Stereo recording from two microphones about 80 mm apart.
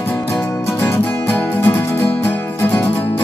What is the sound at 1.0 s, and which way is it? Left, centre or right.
Music, left.